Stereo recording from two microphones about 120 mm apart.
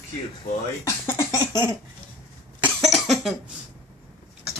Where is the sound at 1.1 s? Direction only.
25° left (ahead or behind).